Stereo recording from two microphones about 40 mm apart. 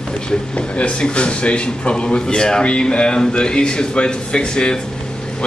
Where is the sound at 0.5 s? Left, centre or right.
Left.